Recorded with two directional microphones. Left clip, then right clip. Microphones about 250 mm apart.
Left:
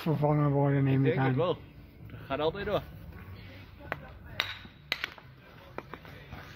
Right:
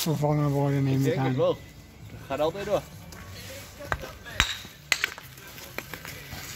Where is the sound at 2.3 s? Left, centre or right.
Left.